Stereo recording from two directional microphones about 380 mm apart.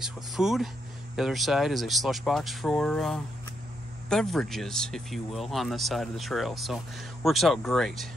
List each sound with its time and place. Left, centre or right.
0.0 s speech: centre